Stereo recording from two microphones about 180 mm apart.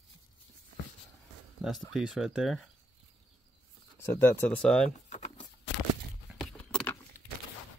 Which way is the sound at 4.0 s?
15° left (ahead or behind).